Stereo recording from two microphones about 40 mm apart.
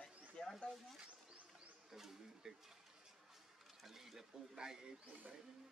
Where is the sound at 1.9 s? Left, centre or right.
Centre.